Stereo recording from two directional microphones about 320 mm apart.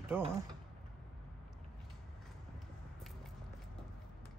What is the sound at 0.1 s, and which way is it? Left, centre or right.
Speech, centre.